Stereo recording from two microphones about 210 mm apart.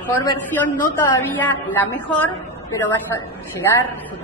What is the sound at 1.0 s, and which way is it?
A woman's voice, 10° left (ahead or behind).